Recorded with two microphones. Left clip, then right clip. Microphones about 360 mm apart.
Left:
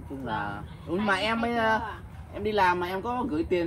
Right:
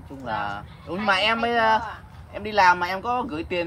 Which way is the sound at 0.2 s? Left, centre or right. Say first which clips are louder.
Right 4 dB; right.